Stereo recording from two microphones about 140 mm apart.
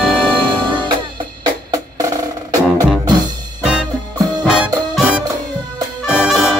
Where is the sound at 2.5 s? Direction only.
25° right (ahead or behind).